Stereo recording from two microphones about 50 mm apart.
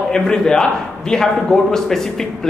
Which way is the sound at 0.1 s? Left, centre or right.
Centre.